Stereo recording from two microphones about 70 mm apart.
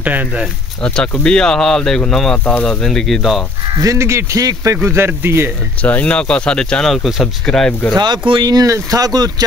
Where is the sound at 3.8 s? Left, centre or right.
Right.